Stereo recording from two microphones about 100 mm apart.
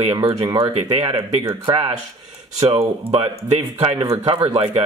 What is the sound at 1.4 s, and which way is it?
Speech, 60° right (ahead or behind).